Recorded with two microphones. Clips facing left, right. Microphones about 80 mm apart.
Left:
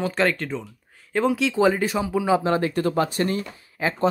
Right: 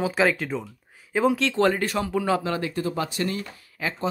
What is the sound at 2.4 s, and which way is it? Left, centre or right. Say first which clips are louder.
Speech: left 5 dB; left.